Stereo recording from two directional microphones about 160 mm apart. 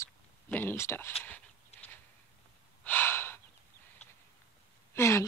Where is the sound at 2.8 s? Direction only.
15° left (ahead or behind).